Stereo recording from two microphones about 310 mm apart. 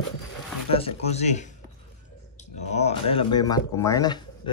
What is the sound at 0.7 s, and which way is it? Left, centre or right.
Speech, centre.